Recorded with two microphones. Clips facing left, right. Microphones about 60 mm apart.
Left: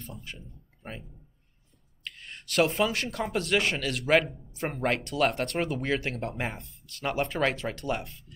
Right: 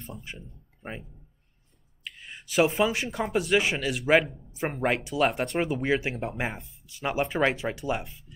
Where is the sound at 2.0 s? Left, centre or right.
Centre.